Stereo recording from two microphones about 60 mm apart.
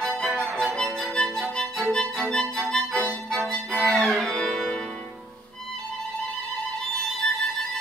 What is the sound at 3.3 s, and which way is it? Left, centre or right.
Violin, centre.